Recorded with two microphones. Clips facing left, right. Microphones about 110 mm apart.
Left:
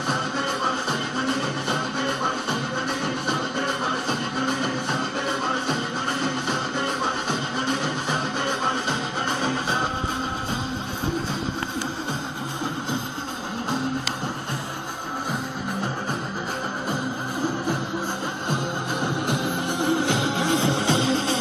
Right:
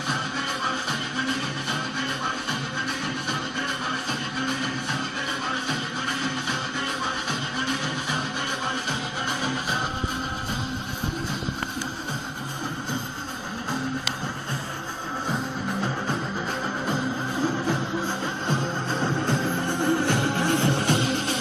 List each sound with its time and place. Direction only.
9.4 s music: 25° left (ahead or behind)
18.5 s music: 10° left (ahead or behind); by 21.4 s 25° left (ahead or behind)